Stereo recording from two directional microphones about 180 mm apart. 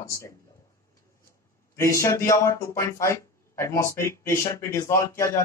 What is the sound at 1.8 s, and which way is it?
Speech, 15° left (ahead or behind).